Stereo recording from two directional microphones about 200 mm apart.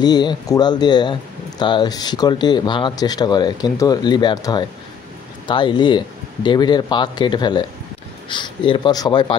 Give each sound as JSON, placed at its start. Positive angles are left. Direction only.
{"t": 0.0, "sound": "speech", "side_deg": 20}